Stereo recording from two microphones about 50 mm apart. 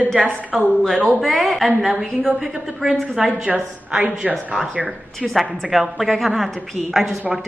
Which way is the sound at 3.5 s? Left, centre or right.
Centre.